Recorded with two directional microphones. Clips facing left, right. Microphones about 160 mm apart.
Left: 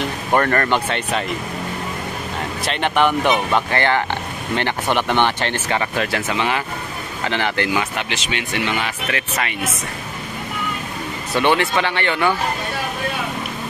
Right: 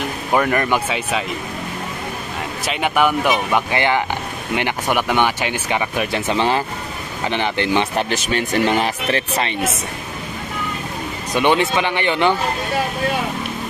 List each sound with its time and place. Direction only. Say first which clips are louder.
0.3 s speech: even; 10° right (ahead or behind)
2.6 s speech: even; 5° right (ahead or behind)
6.2 s speech: right 3 dB; 30° right (ahead or behind)
7.2 s speech: right 1 dB; 20° right (ahead or behind)
7.9 s speech: right 5 dB; 40° right (ahead or behind)
11.3 s speech: right 1 dB; 20° right (ahead or behind)